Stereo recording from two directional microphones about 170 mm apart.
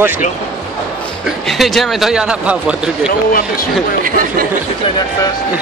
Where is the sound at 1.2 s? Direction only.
Centre (ahead or behind).